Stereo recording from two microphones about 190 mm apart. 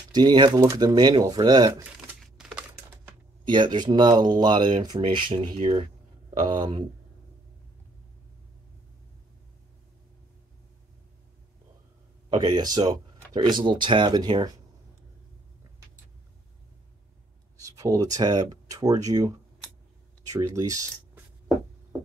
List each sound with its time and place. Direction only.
0.1 s speech: 20° right (ahead or behind)
1.8 s crumpling: 5° right (ahead or behind)
3.4 s speech: 25° right (ahead or behind)
12.3 s speech: 25° right (ahead or behind)
17.6 s speech: 15° right (ahead or behind)